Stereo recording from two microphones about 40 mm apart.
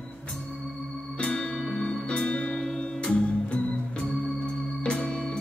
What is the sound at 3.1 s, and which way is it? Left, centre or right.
Music, left.